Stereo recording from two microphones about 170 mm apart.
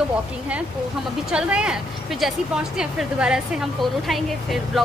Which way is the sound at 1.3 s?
5° right (ahead or behind).